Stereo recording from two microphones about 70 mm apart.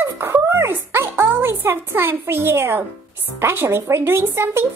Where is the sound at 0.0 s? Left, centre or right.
Right.